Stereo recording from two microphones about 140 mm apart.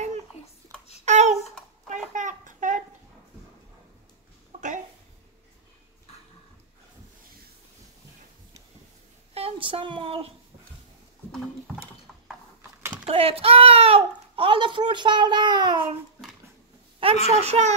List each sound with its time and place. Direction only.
1.0 s babbling: 55° right (ahead or behind)
2.1 s a sound: 65° right (ahead or behind)
4.5 s a sound: 60° right (ahead or behind)
9.3 s speech: 45° right (ahead or behind)
13.0 s a child's voice: 45° right (ahead or behind)
17.0 s a child's voice: 45° right (ahead or behind)